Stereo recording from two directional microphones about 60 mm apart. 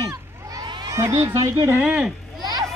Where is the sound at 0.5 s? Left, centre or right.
Right.